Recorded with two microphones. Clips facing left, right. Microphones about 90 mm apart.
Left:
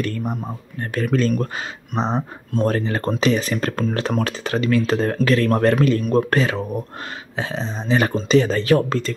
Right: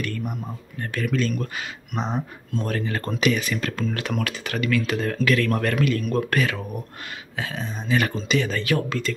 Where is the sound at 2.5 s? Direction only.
40° left (ahead or behind).